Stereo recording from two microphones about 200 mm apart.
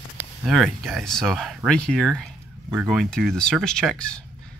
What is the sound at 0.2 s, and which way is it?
Speech, centre (ahead or behind).